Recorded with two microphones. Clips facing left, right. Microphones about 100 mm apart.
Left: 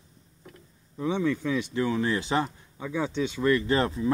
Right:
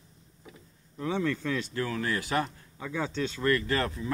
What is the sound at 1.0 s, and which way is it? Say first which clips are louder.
Speech: left 3 dB; 15° left (ahead or behind).